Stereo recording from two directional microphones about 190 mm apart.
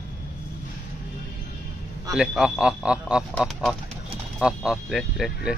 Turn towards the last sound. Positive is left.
turn(degrees=0)  # may be behind; listen again after turning